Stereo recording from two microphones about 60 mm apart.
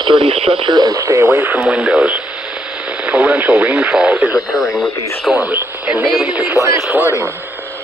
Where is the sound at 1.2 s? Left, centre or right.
Right.